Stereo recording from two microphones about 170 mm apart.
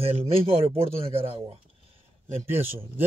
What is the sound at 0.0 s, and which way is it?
Speech, 35° right (ahead or behind).